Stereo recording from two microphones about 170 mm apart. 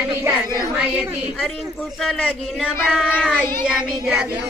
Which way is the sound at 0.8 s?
Centre (ahead or behind).